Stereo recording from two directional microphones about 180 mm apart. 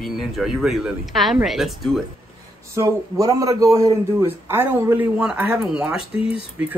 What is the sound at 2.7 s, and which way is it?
A man's voice, 15° right (ahead or behind).